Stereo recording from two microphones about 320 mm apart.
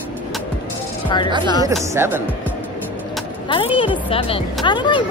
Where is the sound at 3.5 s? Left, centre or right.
Centre.